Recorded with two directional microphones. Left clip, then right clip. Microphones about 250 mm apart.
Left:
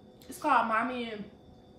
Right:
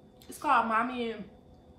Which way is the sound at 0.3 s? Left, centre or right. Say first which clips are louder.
Even; centre.